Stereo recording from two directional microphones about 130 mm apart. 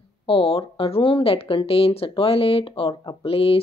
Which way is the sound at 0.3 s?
45° left (ahead or behind).